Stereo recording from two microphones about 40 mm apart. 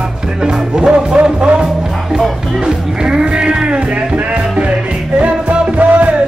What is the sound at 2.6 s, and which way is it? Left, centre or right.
Music, centre.